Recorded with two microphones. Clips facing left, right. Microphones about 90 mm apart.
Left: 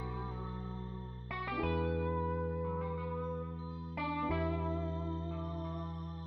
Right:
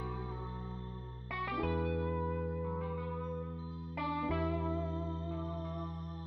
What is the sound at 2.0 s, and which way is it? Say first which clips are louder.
Music: left 1 dB; 10° left (ahead or behind).